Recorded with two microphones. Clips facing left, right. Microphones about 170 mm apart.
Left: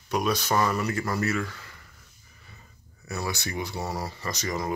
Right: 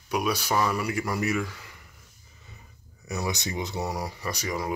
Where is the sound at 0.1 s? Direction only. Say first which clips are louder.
Left 1 dB; 10° right (ahead or behind).